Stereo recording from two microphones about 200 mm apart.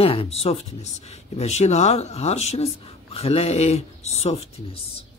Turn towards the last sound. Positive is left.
turn(degrees=30)  # may be behind; listen again after turning